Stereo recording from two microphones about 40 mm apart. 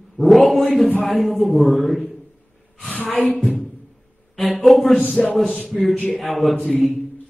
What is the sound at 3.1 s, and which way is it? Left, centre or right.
Speech, left.